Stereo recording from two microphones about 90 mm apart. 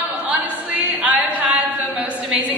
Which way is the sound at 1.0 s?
15° right (ahead or behind).